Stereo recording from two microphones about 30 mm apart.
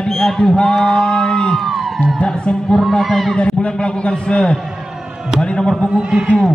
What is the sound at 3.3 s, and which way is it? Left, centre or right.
A man's voice, left.